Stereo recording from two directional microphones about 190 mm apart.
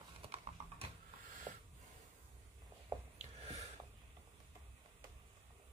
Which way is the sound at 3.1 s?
35° right (ahead or behind).